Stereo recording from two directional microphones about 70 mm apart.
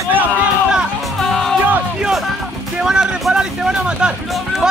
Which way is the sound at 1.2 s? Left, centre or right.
Centre.